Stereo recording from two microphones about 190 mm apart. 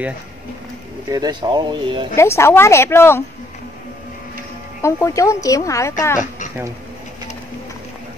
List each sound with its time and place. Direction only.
1.1 s speech: 20° right (ahead or behind)
2.1 s a woman's voice: 15° left (ahead or behind)
4.8 s a woman's voice: 15° left (ahead or behind)